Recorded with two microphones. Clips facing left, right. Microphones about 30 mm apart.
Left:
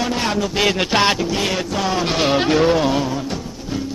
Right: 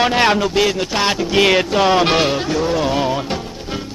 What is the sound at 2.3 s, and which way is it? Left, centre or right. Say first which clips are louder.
Music: left 4 dB; left.